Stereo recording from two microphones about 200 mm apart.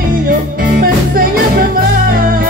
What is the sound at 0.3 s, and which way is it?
Music, 45° right (ahead or behind).